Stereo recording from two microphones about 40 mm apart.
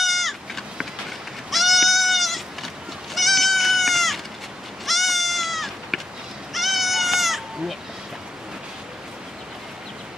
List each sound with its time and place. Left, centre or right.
0.0 s goat: centre